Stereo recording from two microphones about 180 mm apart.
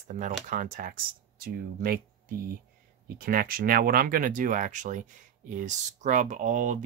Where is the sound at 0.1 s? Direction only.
45° right (ahead or behind).